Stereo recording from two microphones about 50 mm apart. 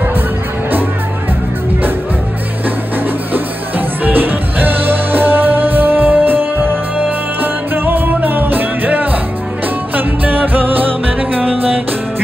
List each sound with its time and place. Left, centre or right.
3.3 s music: right